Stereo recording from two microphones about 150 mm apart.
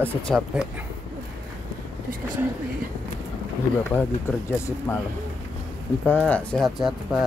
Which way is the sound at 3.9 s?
15° left (ahead or behind).